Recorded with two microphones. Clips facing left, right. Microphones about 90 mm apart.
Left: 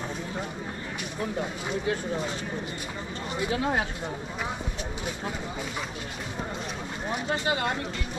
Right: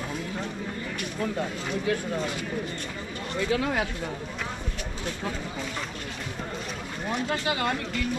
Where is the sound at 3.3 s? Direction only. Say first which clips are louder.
Right 1 dB; 20° left (ahead or behind).